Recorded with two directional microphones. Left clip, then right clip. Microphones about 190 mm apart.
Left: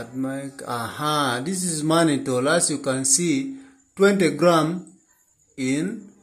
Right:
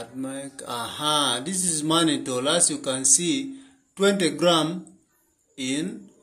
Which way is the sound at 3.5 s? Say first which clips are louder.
Left 6 dB; 20° left (ahead or behind).